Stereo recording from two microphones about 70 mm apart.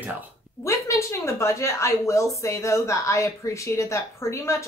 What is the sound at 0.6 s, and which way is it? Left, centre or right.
A woman's voice, left.